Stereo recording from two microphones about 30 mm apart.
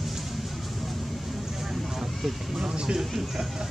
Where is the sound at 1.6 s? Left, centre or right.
Centre.